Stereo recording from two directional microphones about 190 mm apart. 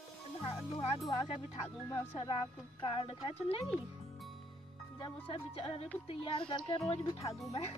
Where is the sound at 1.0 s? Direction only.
30° left (ahead or behind).